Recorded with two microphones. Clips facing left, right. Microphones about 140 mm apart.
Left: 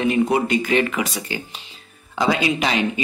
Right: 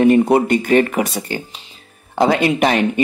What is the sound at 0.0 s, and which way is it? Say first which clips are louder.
Speech: right 7 dB; 50° right (ahead or behind).